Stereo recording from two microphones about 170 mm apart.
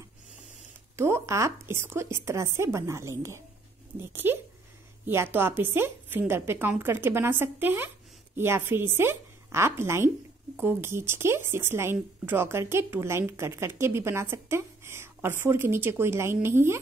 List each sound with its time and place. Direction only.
0.9 s speech: 15° right (ahead or behind)